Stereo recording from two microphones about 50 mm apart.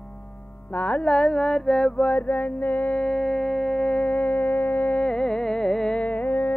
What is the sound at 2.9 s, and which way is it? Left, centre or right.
Music, centre.